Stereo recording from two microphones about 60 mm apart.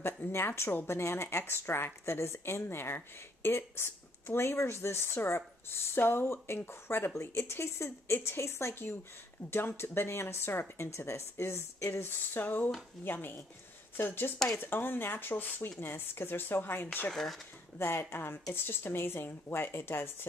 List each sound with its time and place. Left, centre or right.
0.0 s speech: left
16.8 s speech: left
17.1 s speech: centre
17.7 s speech: left